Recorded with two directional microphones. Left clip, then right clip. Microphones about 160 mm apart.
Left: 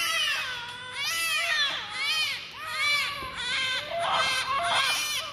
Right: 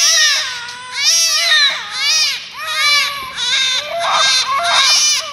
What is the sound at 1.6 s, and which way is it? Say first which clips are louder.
Baby cry: right 13 dB; 20° right (ahead or behind).